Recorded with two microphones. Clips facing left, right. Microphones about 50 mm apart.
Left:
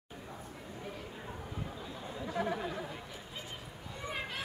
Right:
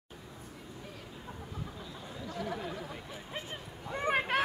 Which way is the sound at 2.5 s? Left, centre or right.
Centre.